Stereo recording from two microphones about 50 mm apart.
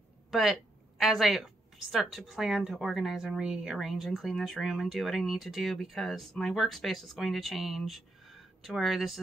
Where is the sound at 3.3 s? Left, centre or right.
Centre.